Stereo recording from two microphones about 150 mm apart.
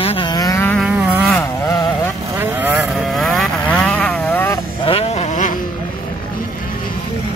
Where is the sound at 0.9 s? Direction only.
5° right (ahead or behind).